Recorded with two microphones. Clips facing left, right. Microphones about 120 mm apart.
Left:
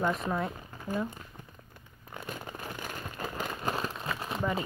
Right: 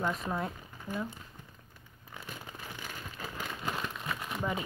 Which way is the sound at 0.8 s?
45° left (ahead or behind).